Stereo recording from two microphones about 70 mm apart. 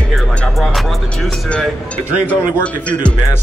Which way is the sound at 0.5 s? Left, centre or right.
Centre.